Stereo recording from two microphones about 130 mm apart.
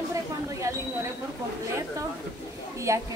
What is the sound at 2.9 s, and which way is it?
Speech, 20° right (ahead or behind).